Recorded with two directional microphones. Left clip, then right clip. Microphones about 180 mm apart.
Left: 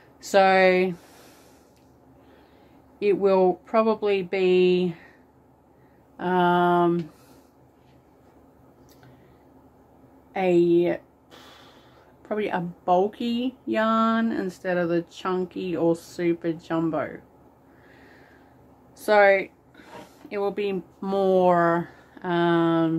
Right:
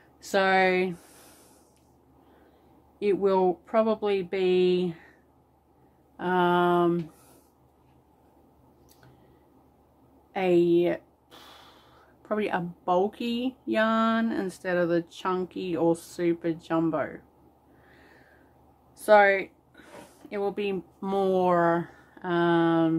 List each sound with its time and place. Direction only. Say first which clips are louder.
0.2 s speech: left 5 dB; 10° right (ahead or behind)
3.0 s speech: left 4 dB; 10° right (ahead or behind)
6.1 s speech: left 3 dB; 15° right (ahead or behind)
10.3 s a sound: left 2 dB; 20° right (ahead or behind)
12.2 s speech: left 1 dB; 20° right (ahead or behind)
18.9 s a woman's voice: left 1 dB; 15° right (ahead or behind)